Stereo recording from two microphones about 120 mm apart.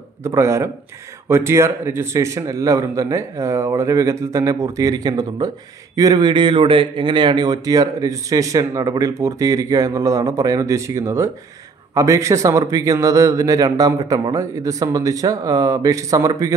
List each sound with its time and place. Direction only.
0.2 s speech: 25° right (ahead or behind)